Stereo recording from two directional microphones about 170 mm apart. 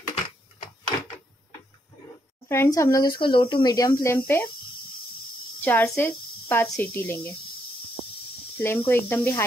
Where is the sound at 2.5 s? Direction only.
15° left (ahead or behind).